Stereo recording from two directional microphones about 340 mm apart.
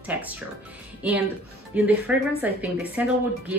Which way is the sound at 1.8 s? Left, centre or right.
Centre.